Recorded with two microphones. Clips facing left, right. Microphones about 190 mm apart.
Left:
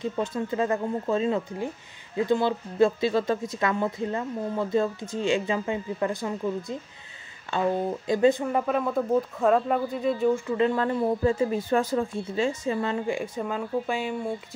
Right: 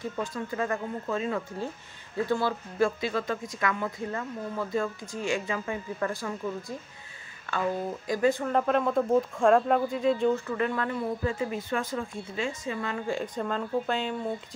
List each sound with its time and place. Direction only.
0.0 s speech: 25° left (ahead or behind)
13.0 s speech: 10° left (ahead or behind)